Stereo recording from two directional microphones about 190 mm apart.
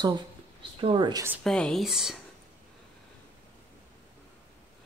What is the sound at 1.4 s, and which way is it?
Speech, 5° left (ahead or behind).